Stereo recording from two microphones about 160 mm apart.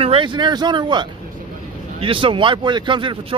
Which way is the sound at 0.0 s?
35° right (ahead or behind).